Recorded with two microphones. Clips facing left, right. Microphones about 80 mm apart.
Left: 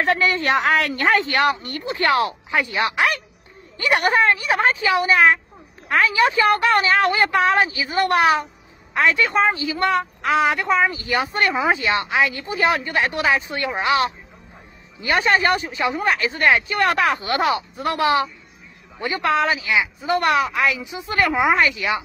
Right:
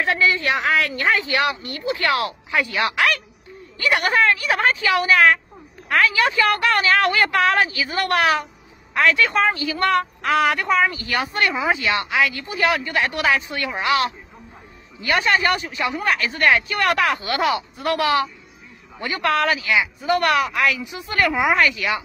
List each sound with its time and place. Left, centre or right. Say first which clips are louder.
0.0 s speech: left 1 dB; left
1.9 s speech: left 2 dB; left
11.3 s a woman's voice: left 1 dB; left